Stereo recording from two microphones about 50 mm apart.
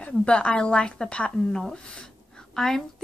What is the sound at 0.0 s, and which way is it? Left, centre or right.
A woman's voice, left.